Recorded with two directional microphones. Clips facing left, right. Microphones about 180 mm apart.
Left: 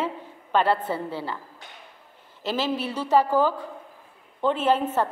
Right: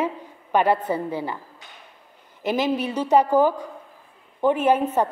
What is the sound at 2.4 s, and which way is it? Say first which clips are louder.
A woman's voice: right 4 dB; 15° right (ahead or behind).